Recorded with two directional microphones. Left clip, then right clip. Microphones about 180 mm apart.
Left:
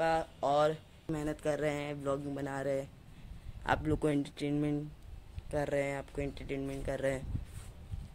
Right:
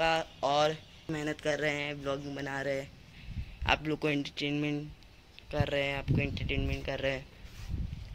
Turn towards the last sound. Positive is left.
turn(degrees=10)  # may be behind; listen again after turning